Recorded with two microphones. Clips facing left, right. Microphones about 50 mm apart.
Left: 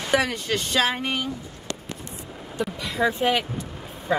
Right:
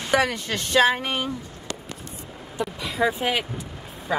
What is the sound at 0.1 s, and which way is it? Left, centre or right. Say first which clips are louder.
Speech: right 1 dB; centre.